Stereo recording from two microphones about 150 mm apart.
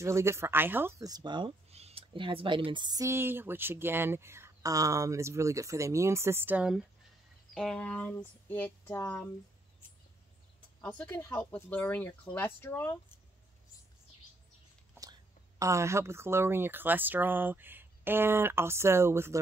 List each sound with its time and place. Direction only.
0.0 s speech: 20° right (ahead or behind)
1.7 s speech: 45° right (ahead or behind); by 6.9 s 5° right (ahead or behind)
7.5 s speech: 5° left (ahead or behind)
10.8 s speech: 10° left (ahead or behind)
15.6 s speech: 20° right (ahead or behind)